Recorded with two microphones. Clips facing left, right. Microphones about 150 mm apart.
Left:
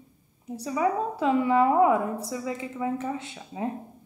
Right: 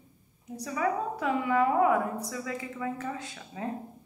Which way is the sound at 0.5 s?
25° left (ahead or behind).